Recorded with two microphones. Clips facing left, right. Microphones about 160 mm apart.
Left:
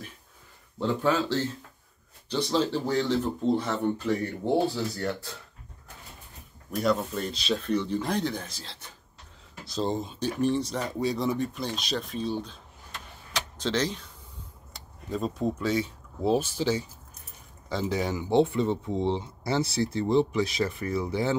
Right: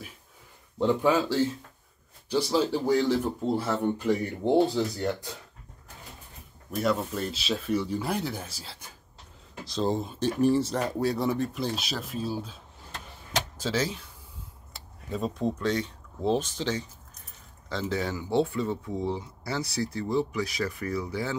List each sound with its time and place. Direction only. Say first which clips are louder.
0.7 s speech: right 2 dB; 15° right (ahead or behind)
6.7 s speech: left 1 dB; centre (ahead or behind)
13.6 s speech: left 3 dB; 5° right (ahead or behind); by 21.4 s 25° left (ahead or behind)